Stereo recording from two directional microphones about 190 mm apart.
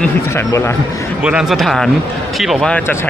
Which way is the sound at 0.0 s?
15° left (ahead or behind).